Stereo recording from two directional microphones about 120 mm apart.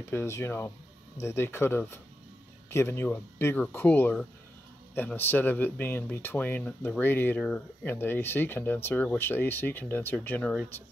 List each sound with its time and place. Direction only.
0.1 s speech: 20° left (ahead or behind)